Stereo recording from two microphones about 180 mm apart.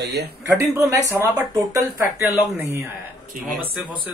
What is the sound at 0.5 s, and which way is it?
Speech, 15° right (ahead or behind).